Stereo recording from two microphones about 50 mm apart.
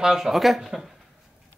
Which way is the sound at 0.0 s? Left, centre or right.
Centre.